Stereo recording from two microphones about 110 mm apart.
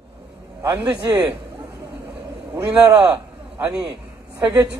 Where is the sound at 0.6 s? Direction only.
25° right (ahead or behind).